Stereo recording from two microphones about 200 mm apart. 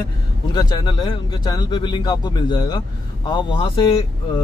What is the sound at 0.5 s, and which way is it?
A man's voice, 20° left (ahead or behind).